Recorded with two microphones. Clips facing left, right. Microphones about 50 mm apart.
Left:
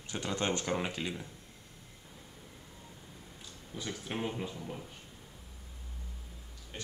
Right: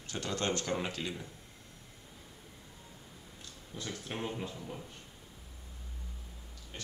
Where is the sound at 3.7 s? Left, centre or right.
Centre.